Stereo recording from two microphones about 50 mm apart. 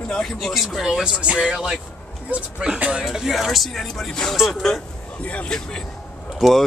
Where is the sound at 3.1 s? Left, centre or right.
Centre.